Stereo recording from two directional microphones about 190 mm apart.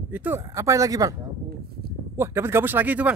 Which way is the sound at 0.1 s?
10° right (ahead or behind).